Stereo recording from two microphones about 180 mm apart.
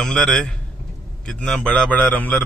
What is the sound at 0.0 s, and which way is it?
A man's voice, 5° left (ahead or behind).